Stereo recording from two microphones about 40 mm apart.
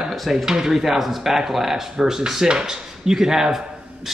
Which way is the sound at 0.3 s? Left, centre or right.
Centre.